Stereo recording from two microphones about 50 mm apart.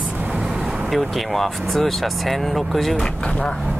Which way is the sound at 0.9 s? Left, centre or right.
Centre.